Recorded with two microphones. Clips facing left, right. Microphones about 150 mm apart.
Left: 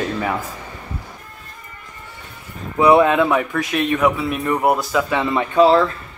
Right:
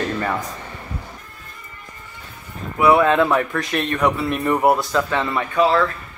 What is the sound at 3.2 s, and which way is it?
Speech, 5° left (ahead or behind).